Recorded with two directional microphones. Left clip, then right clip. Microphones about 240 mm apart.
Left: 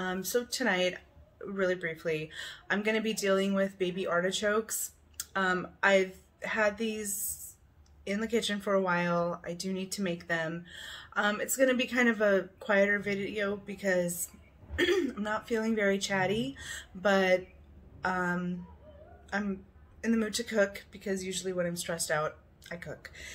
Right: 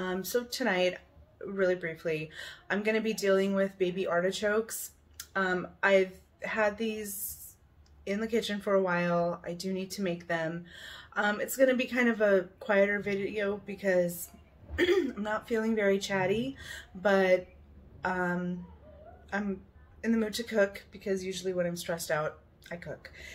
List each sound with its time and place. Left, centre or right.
0.0 s speech: centre